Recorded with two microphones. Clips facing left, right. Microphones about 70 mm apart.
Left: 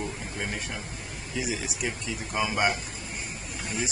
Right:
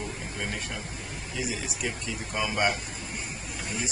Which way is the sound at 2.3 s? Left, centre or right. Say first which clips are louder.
Left 1 dB; centre.